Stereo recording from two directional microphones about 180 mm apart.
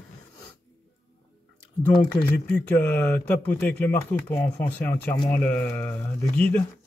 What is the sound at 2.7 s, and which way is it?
Speech, 10° left (ahead or behind).